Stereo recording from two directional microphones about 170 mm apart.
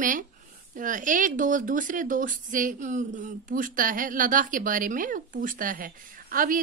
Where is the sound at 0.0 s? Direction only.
50° right (ahead or behind).